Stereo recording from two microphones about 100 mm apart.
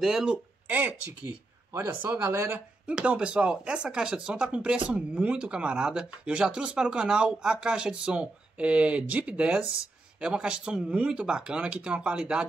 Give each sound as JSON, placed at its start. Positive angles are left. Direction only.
{"t": 0.0, "sound": "speech", "side_deg": -5}
{"t": 2.9, "sound": "speech", "side_deg": -10}